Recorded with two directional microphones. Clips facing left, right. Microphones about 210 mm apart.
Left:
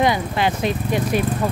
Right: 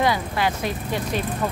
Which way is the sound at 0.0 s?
20° left (ahead or behind).